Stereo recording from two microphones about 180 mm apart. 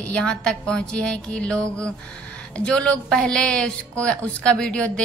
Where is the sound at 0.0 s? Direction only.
5° left (ahead or behind).